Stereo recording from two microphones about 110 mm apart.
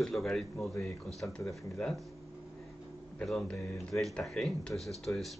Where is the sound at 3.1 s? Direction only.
10° left (ahead or behind).